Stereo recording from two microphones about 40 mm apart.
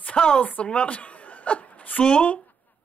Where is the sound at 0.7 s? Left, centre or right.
Left.